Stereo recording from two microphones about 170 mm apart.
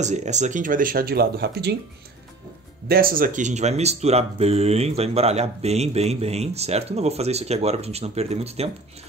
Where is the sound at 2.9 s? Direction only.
60° right (ahead or behind).